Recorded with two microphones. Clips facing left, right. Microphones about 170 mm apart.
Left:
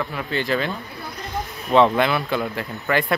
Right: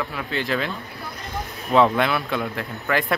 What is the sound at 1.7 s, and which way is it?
Speech, centre (ahead or behind).